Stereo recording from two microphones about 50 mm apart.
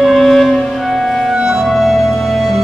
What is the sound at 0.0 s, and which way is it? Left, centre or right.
Music, centre.